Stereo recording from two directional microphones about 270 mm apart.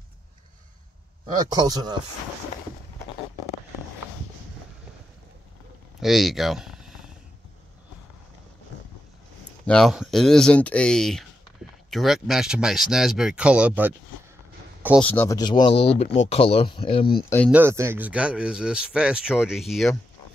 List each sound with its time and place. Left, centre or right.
1.2 s speech: centre
5.9 s a sound: centre
9.7 s speech: centre
15.0 s speech: centre
17.2 s speech: centre
17.5 s speech: centre